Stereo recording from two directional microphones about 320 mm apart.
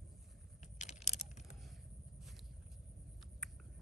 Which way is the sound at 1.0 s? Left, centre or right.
Left.